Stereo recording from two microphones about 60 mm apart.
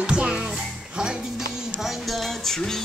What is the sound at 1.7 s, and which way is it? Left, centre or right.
Music, centre.